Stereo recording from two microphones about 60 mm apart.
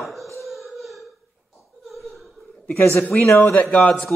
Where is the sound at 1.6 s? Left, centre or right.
Centre.